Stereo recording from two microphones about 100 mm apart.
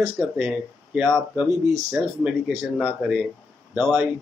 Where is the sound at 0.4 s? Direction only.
10° right (ahead or behind).